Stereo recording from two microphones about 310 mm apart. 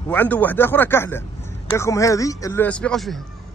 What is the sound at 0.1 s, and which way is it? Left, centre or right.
Speech, centre.